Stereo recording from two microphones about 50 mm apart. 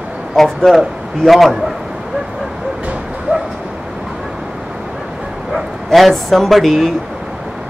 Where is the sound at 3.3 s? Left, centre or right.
Right.